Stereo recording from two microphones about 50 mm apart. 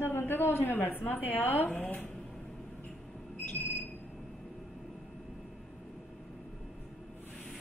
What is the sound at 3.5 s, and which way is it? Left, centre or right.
Smoke detector, left.